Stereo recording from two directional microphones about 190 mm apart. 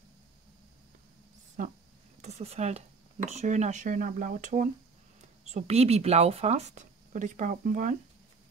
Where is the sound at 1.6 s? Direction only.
45° right (ahead or behind).